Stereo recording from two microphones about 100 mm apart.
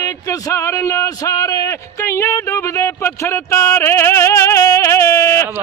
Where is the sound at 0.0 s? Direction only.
35° left (ahead or behind).